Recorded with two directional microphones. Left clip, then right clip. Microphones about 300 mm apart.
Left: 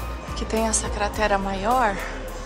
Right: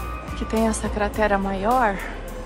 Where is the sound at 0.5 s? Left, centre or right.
Centre.